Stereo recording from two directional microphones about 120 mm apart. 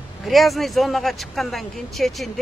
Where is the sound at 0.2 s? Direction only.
Centre (ahead or behind).